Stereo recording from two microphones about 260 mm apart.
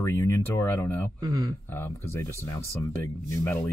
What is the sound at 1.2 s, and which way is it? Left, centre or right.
Speech, centre.